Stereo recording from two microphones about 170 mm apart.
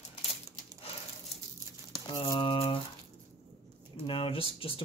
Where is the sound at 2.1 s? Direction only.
30° left (ahead or behind).